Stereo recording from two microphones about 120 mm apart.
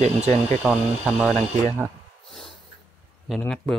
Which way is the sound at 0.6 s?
10° right (ahead or behind).